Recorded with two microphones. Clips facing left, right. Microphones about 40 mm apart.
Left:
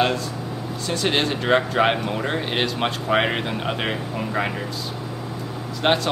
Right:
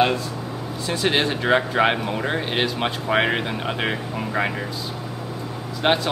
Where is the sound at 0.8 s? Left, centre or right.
Centre.